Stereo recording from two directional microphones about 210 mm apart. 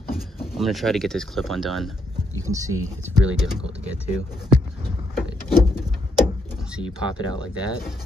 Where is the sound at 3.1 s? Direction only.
5° right (ahead or behind).